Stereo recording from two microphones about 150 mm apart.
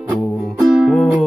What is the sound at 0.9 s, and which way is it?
Music, 5° left (ahead or behind).